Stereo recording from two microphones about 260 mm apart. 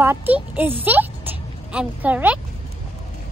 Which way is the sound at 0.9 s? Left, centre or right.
Centre.